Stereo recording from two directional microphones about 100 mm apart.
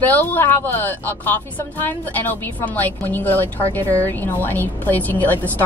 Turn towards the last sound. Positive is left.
turn(degrees=15)  # may be behind; listen again after turning